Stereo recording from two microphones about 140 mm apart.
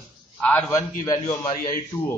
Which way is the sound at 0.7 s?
20° left (ahead or behind).